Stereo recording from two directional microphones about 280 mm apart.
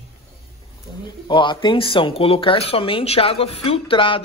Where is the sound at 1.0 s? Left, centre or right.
Centre.